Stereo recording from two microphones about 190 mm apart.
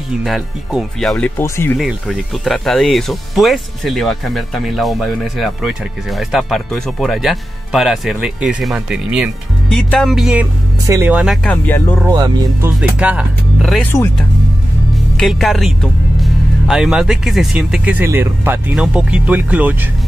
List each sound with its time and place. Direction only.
0.2 s speech: centre (ahead or behind)
1.8 s speech: centre (ahead or behind)
11.4 s speech: 10° left (ahead or behind)
12.1 s speech: 20° right (ahead or behind)
13.0 s speech: 5° right (ahead or behind)
15.1 s speech: centre (ahead or behind)